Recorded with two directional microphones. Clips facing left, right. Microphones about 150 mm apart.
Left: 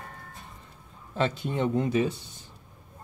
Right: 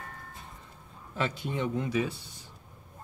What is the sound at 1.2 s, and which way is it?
Speech, 35° left (ahead or behind).